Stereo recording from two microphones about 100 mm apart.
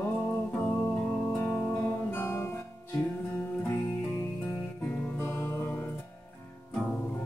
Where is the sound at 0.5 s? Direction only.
15° left (ahead or behind).